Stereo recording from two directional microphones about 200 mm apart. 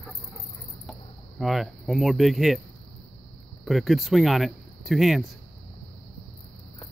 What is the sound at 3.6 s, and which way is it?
Speech, centre (ahead or behind).